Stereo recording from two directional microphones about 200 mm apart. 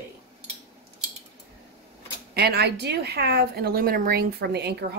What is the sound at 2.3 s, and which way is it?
Speech, 55° right (ahead or behind).